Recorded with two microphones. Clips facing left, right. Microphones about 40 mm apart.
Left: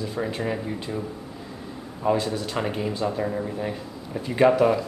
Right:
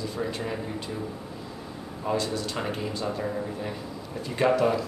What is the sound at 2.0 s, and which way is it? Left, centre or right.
Speech, centre.